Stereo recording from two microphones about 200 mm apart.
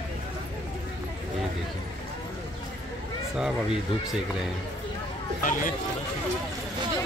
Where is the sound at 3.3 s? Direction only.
5° right (ahead or behind).